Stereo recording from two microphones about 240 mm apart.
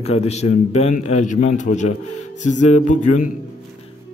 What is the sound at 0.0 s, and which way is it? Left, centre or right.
A man's voice, left.